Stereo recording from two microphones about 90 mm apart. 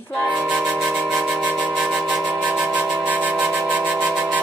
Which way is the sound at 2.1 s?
15° right (ahead or behind).